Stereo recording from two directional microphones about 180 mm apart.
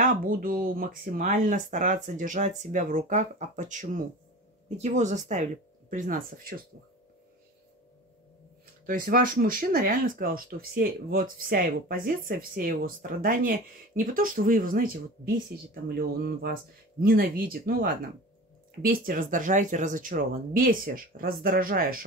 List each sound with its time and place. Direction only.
0.0 s speech: 50° right (ahead or behind)
8.8 s speech: 50° right (ahead or behind)